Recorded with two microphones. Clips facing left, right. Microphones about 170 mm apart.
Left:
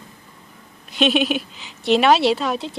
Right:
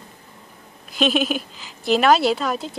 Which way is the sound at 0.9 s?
Centre (ahead or behind).